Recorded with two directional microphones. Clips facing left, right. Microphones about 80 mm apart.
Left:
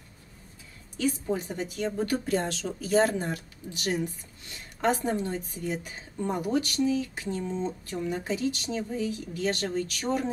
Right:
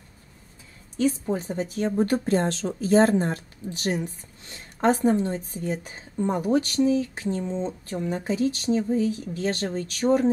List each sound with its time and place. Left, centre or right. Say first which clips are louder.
0.9 s speech: right 4 dB; right